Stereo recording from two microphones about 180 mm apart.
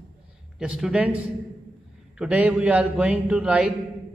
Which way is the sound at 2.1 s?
5° right (ahead or behind).